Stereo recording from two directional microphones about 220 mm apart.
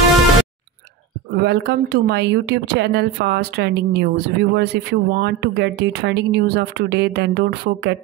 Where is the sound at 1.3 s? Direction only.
50° right (ahead or behind).